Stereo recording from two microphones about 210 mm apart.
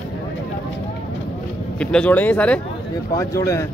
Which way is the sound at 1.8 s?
5° left (ahead or behind).